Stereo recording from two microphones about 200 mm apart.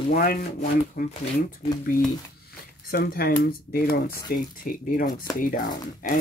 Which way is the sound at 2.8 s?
50° left (ahead or behind).